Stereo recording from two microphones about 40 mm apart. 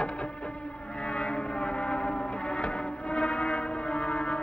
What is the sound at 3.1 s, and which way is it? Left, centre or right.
Music, left.